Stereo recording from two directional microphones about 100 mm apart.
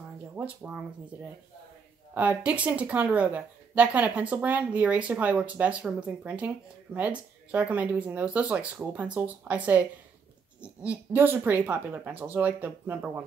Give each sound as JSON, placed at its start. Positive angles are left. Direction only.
{"t": 0.4, "sound": "a woman's voice", "side_deg": -15}
{"t": 2.1, "sound": "a woman's voice", "side_deg": -15}